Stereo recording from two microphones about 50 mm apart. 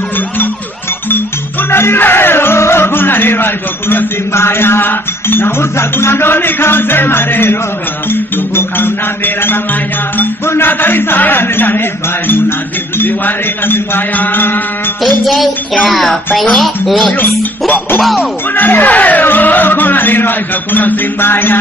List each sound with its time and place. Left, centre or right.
1.7 s music: left
8.1 s speech: left
13.0 s speech: left
15.2 s speech: centre
17.2 s music: left
18.6 s speech: left